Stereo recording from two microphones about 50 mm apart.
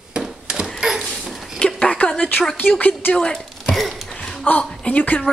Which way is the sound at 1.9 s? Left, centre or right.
Left.